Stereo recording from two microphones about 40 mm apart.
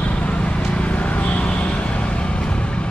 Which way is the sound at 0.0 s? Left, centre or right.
Left.